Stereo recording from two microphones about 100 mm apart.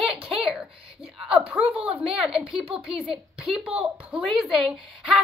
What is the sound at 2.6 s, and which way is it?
Speech, 65° right (ahead or behind).